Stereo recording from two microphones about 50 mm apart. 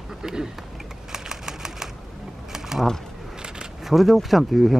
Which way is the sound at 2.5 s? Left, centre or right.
Centre.